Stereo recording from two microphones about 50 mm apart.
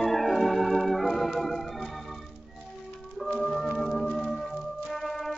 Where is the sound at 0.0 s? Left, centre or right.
Centre.